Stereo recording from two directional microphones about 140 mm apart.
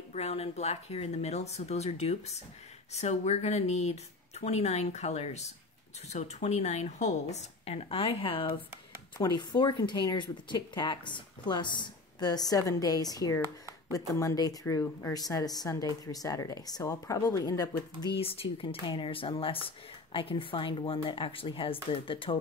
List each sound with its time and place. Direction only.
0.1 s speech: 50° left (ahead or behind); by 18.1 s 25° left (ahead or behind)
18.1 s speech: 45° left (ahead or behind)